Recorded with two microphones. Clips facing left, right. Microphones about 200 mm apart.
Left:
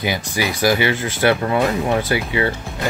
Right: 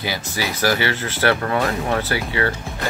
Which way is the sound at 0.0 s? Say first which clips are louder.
Left 4 dB; 15° left (ahead or behind).